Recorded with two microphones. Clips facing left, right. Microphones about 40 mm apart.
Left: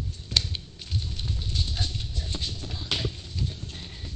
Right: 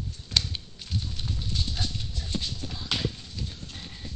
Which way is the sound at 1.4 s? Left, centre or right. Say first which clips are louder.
Even; left.